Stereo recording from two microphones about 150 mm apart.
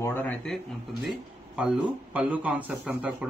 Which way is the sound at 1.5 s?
10° right (ahead or behind).